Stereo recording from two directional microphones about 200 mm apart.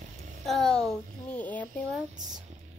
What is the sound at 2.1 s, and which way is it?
Speech, 20° right (ahead or behind).